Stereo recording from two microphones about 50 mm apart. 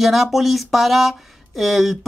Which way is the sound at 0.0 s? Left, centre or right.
Centre.